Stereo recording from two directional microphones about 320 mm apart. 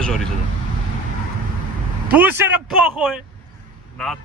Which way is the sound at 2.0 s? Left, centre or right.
Centre.